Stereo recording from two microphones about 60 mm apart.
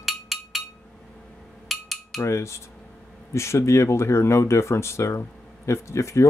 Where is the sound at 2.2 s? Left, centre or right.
Left.